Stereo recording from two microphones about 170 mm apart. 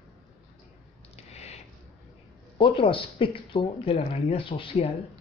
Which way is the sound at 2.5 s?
30° left (ahead or behind).